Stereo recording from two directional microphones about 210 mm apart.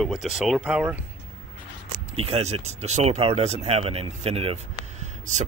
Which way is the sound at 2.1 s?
30° right (ahead or behind).